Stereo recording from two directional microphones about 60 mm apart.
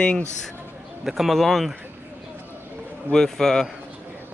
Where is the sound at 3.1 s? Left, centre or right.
Centre.